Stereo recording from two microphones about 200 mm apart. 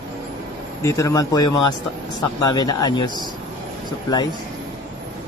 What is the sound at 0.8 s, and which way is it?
Speech, 15° left (ahead or behind).